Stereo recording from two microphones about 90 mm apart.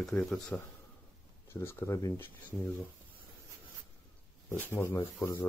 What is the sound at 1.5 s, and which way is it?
Speech, 30° left (ahead or behind).